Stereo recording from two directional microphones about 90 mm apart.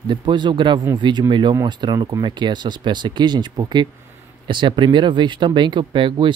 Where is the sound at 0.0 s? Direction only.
55° right (ahead or behind).